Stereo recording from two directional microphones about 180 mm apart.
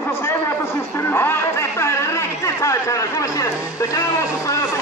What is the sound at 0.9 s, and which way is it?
Speech, 10° left (ahead or behind).